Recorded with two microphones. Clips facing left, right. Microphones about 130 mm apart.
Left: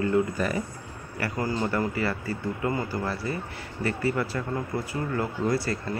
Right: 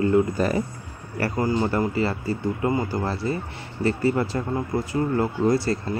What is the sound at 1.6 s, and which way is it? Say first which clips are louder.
Speech: right 4 dB; 25° right (ahead or behind).